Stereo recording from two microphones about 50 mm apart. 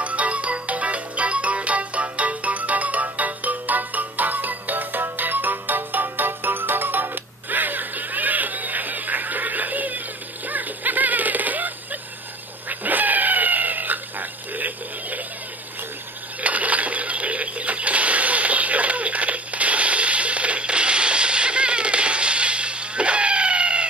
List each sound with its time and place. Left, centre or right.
0.0 s music: right
12.6 s cat: right
16.3 s a sound: right